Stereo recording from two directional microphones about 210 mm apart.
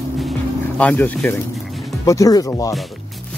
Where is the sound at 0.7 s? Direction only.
5° left (ahead or behind).